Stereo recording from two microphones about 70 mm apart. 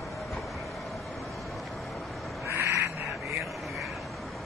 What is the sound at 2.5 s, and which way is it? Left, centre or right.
Crow, right.